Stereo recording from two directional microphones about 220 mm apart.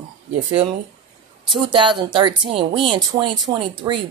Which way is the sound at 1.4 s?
20° right (ahead or behind).